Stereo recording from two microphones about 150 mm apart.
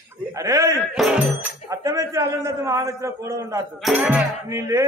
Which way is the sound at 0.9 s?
Centre (ahead or behind).